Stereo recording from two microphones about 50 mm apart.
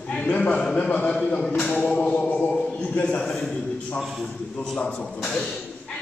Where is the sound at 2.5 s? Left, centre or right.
Centre.